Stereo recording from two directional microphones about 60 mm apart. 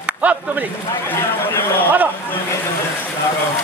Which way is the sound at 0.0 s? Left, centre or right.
Right.